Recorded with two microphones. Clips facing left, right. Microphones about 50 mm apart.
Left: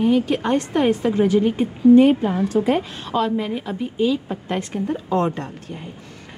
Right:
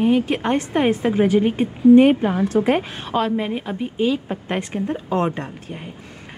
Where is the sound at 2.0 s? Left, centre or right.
Right.